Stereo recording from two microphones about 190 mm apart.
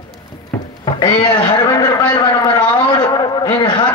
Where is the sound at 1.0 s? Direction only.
25° left (ahead or behind).